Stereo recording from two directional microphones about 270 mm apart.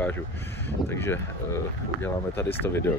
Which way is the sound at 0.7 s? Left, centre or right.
Centre.